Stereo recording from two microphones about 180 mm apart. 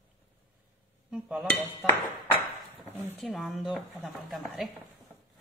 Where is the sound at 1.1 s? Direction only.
Centre (ahead or behind).